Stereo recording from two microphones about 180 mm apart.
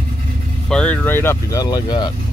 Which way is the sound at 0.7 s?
5° left (ahead or behind).